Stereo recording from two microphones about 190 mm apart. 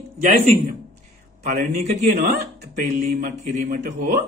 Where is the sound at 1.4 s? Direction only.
40° right (ahead or behind).